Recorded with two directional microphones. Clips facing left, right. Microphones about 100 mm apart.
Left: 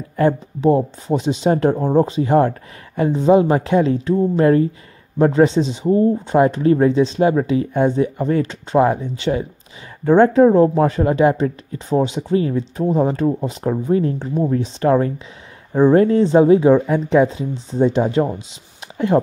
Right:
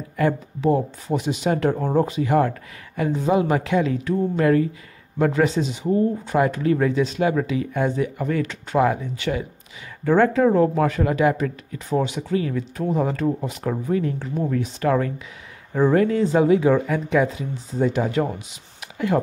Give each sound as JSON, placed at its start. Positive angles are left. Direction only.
{"t": 0.1, "sound": "speech", "side_deg": 30}